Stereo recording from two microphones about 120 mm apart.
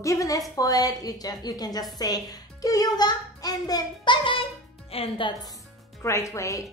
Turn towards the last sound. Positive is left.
turn(degrees=25)  # may be behind; listen again after turning